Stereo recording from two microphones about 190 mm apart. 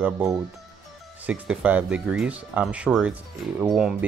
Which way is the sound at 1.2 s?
5° right (ahead or behind).